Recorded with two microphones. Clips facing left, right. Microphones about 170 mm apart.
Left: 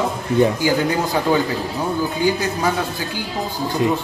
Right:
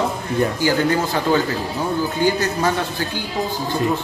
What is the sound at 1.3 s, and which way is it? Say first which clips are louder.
Speech: even; 15° left (ahead or behind).